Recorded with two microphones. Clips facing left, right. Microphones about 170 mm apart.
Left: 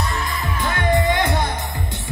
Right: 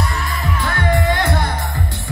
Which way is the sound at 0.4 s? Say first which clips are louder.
Right 3 dB; 20° left (ahead or behind).